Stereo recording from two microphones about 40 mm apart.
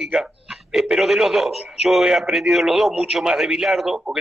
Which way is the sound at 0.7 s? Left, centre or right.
Centre.